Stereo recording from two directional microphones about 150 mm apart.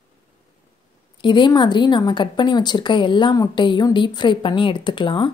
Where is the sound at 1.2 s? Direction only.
30° left (ahead or behind).